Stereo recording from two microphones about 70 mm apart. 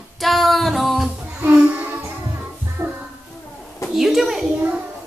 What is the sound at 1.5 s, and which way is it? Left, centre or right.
Child singing, centre.